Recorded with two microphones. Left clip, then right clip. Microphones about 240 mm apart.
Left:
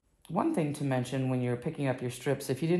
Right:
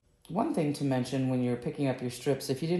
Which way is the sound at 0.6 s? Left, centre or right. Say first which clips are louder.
Right 1 dB; centre.